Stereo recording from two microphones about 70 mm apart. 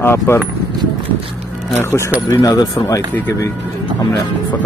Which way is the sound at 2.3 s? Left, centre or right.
Left.